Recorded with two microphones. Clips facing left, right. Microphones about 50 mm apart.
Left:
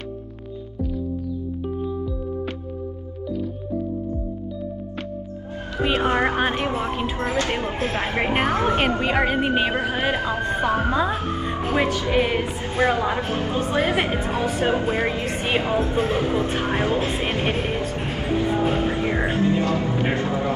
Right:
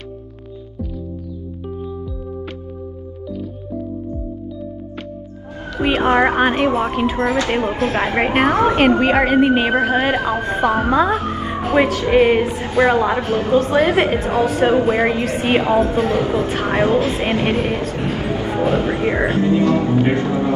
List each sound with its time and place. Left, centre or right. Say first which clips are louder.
5.8 s a woman's voice: right 6 dB; right